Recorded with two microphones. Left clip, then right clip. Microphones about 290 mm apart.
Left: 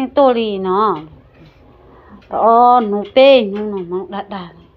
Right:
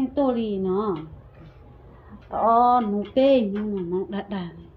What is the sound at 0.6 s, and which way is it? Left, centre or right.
Speech, centre.